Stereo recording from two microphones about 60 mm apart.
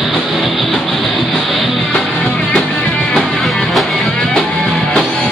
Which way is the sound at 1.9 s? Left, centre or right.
Centre.